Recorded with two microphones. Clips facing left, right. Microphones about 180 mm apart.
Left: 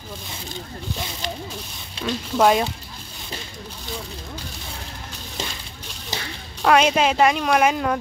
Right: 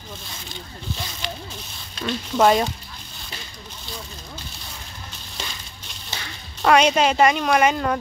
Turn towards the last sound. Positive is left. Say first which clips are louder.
# even
turn(degrees=5)  # may be behind; listen again after turning